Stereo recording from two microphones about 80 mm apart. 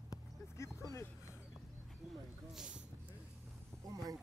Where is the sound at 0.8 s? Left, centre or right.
Left.